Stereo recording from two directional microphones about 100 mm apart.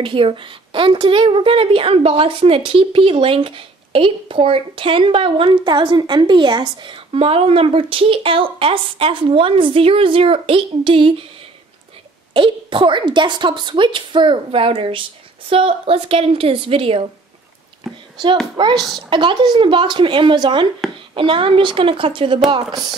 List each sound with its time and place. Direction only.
0.0 s a woman's voice: 60° right (ahead or behind)
12.4 s a woman's voice: 55° right (ahead or behind)
17.9 s a child's voice: centre (ahead or behind)
18.6 s a woman's voice: 55° right (ahead or behind)
22.7 s a woman's voice: 45° right (ahead or behind)